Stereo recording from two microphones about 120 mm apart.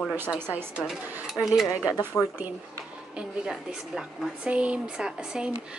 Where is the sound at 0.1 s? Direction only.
15° right (ahead or behind).